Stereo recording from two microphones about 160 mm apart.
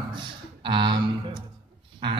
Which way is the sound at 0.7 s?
30° right (ahead or behind).